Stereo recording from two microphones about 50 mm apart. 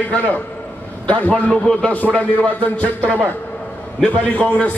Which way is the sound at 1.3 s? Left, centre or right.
Centre.